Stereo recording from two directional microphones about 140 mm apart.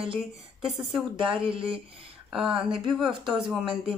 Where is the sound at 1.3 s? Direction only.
40° right (ahead or behind).